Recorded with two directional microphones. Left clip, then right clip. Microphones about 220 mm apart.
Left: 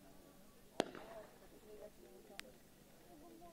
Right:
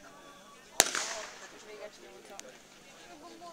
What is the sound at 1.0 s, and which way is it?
Fireworks, 35° right (ahead or behind).